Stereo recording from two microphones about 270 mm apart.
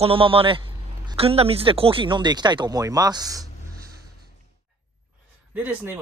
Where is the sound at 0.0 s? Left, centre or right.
Centre.